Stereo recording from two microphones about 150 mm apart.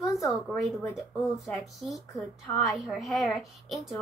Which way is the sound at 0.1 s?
Centre (ahead or behind).